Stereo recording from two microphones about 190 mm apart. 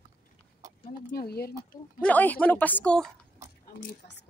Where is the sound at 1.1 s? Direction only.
55° left (ahead or behind).